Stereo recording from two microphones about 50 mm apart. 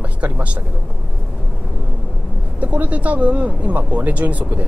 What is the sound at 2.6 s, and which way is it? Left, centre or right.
Speech, right.